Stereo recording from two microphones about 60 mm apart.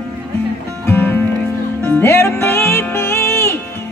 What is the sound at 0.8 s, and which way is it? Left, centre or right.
Music, left.